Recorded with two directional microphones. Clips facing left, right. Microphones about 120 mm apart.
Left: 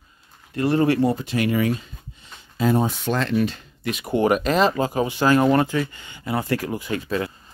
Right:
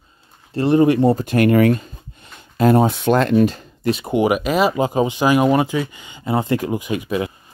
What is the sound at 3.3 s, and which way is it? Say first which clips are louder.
Speech: right 7 dB; 40° right (ahead or behind).